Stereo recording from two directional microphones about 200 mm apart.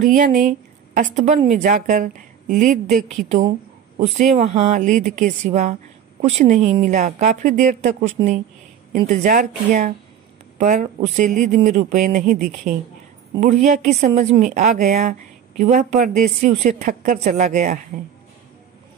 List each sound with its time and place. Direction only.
0.0 s a woman's voice: 40° right (ahead or behind)